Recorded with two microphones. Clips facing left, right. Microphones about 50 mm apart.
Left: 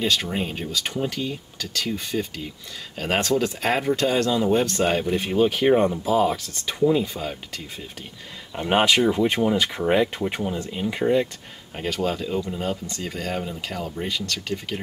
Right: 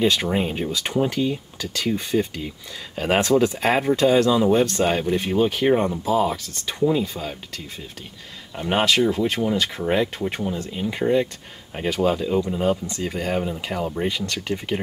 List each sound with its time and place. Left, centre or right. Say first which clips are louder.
0.0 s speech: right 4 dB; centre